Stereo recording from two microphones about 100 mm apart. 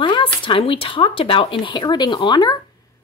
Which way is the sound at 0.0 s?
55° left (ahead or behind).